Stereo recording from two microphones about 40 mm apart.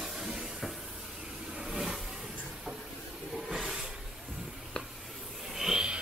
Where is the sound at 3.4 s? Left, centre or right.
Centre.